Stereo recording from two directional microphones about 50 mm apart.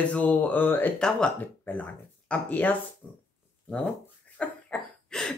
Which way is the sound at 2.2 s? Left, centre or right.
Left.